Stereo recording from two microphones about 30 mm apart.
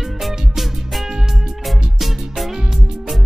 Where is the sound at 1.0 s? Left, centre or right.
Centre.